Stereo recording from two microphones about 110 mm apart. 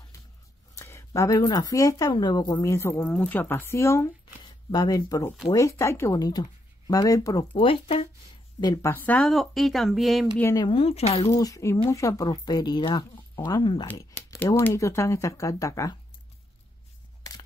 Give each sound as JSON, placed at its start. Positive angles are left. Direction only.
{"t": 0.7, "sound": "speech", "side_deg": 25}
{"t": 2.6, "sound": "speech", "side_deg": 25}
{"t": 3.1, "sound": "speech", "side_deg": 10}
{"t": 4.4, "sound": "a sound", "side_deg": 35}
{"t": 5.5, "sound": "speech", "side_deg": 30}
{"t": 7.5, "sound": "speech", "side_deg": 55}
{"t": 8.8, "sound": "speech", "side_deg": 15}
{"t": 9.3, "sound": "speech", "side_deg": 0}
{"t": 10.7, "sound": "speech", "side_deg": 65}
{"t": 11.3, "sound": "speech", "side_deg": 30}
{"t": 14.7, "sound": "speech", "side_deg": 25}